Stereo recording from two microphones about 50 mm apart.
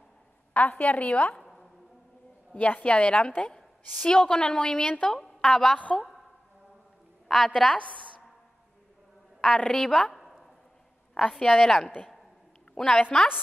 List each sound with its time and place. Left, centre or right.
0.5 s a woman's voice: left
1.4 s a sound: centre
2.5 s a woman's voice: left
5.2 s a woman's voice: centre
5.8 s a woman's voice: left
7.2 s a woman's voice: centre
9.6 s a woman's voice: centre
11.1 s a woman's voice: centre